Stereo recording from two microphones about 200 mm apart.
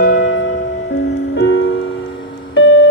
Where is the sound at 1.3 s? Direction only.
60° left (ahead or behind).